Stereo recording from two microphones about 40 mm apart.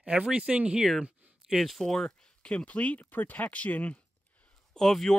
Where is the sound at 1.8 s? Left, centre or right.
Centre.